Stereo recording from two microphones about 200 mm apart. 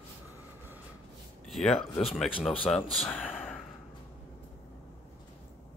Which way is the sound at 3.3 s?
Centre (ahead or behind).